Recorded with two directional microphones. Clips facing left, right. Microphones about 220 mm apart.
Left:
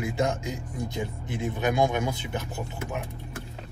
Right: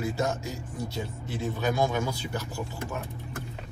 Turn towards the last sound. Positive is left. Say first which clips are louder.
# left 1 dB
turn(degrees=20)  # may be behind; listen again after turning